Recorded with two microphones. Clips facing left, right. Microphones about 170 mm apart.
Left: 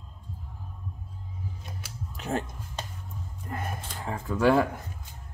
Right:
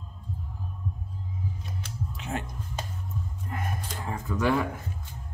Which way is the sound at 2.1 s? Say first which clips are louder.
Left 4 dB; 35° left (ahead or behind).